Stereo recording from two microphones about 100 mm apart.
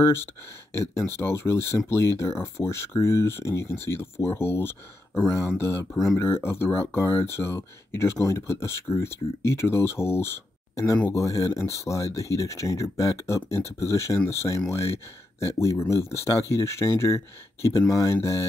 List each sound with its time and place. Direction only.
0.7 s speech: 25° left (ahead or behind)